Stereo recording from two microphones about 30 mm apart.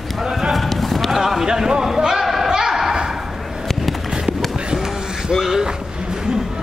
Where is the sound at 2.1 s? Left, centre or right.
Centre.